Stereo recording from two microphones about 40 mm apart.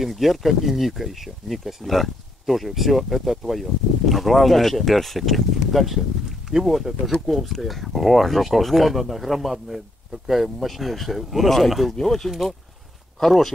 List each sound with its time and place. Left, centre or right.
0.0 s speech: centre
12.3 s speech: centre